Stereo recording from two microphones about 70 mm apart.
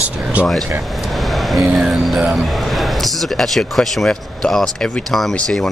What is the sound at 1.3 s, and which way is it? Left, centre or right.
Vehicle, centre.